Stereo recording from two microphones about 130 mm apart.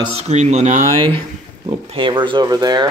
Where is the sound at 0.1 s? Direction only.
55° right (ahead or behind).